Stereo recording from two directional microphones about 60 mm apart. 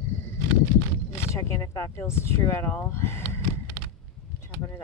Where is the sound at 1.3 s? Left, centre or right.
Left.